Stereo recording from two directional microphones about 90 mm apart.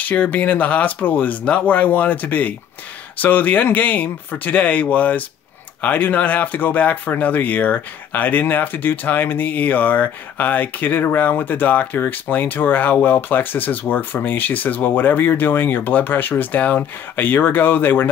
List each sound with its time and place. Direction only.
0.0 s speech: 15° left (ahead or behind)